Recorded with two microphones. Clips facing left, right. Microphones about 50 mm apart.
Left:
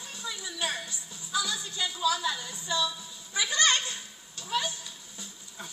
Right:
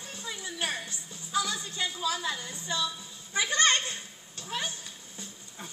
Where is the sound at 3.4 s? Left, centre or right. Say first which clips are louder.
Right 1 dB; right.